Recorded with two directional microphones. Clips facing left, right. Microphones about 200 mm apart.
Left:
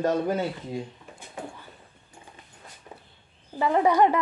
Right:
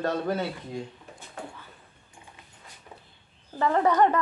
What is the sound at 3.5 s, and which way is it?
Speech, 10° left (ahead or behind).